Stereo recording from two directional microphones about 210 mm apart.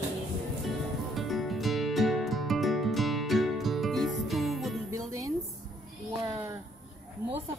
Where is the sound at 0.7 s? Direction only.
Centre (ahead or behind).